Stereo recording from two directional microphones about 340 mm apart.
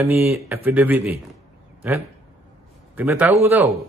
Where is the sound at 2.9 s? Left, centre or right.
Centre.